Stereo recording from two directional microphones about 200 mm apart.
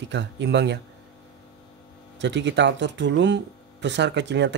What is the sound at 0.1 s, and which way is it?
Speech, 60° right (ahead or behind).